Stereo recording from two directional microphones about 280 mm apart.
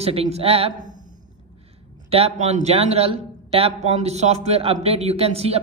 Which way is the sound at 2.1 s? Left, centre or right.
Right.